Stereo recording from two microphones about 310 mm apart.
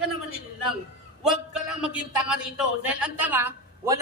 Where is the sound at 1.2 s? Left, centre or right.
Centre.